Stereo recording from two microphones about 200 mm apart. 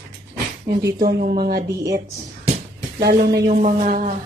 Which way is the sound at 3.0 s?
55° right (ahead or behind).